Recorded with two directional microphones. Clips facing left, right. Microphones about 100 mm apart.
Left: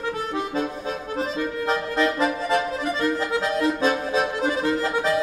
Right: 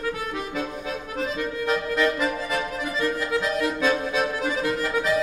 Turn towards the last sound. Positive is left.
turn(degrees=30)  # may be behind; listen again after turning